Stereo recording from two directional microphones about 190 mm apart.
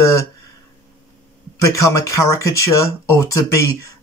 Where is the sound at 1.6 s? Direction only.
15° left (ahead or behind).